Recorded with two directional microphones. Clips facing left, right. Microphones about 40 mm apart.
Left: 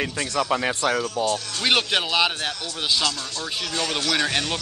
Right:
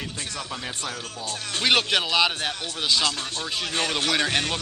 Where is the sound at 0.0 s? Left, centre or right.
Left.